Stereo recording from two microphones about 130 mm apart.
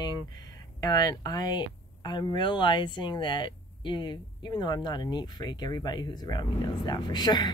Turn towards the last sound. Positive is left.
turn(degrees=30)  # may be behind; listen again after turning